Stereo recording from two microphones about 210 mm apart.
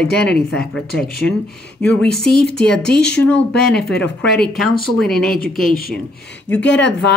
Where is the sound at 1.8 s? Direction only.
5° left (ahead or behind).